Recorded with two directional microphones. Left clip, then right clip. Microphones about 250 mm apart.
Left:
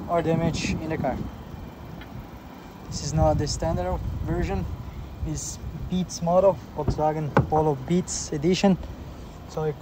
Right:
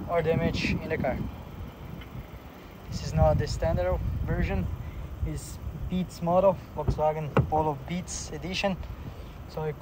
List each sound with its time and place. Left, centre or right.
0.1 s speech: centre
2.9 s speech: centre
5.9 s speech: centre; by 8.7 s left
9.6 s speech: centre